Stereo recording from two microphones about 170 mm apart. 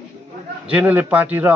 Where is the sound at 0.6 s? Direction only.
10° right (ahead or behind).